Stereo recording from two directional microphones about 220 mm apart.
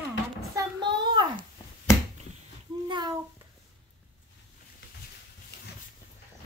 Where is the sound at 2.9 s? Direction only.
20° right (ahead or behind).